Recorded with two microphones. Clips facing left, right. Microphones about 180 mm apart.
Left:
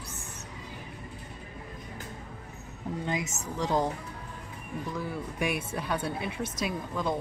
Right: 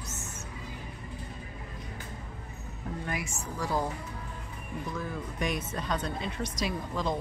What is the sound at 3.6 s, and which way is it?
Speech, 20° left (ahead or behind).